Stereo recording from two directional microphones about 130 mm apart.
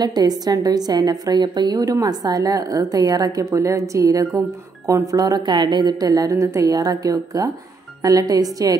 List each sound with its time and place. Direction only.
0.0 s a woman's voice: 30° right (ahead or behind)